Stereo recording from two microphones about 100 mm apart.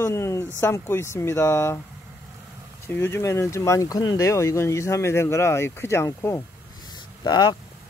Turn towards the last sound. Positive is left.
turn(degrees=45)  # may be behind; listen again after turning